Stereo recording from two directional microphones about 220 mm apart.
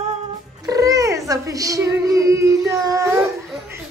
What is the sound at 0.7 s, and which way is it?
Cat, 15° right (ahead or behind).